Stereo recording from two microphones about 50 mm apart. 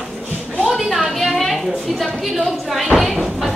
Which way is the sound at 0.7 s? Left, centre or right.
Centre.